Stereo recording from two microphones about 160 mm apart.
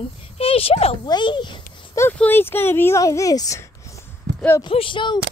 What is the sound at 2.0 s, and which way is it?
Speech, 10° left (ahead or behind).